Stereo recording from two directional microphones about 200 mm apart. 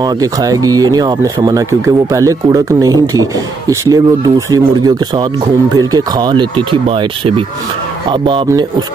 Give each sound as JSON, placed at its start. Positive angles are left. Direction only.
{"t": 0.0, "sound": "speech", "side_deg": -15}